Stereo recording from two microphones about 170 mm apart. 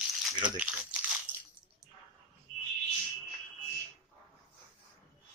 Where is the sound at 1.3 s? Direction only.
10° left (ahead or behind).